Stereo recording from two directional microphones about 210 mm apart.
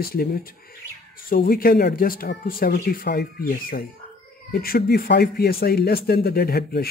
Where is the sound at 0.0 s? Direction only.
45° left (ahead or behind).